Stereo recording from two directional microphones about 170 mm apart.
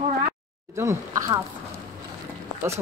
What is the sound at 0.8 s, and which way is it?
Speech, 15° right (ahead or behind).